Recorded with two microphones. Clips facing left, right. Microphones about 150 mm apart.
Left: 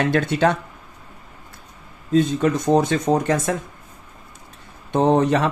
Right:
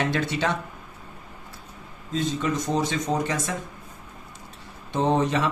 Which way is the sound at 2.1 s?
55° left (ahead or behind).